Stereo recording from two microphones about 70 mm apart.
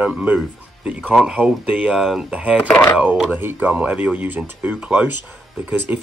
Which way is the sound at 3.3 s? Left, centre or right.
Right.